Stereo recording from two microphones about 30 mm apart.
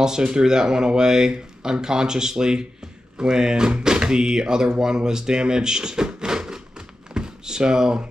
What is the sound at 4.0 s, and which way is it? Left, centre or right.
Speech, right.